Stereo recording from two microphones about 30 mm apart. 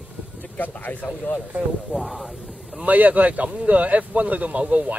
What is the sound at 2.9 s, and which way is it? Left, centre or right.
Speech, right.